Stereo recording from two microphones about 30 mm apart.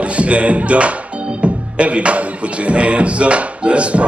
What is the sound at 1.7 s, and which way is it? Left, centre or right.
Music, right.